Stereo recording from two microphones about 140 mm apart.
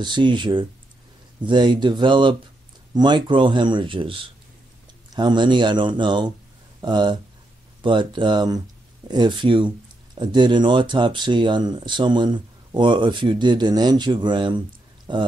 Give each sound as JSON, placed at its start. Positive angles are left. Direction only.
{"t": 0.0, "sound": "speech", "side_deg": -35}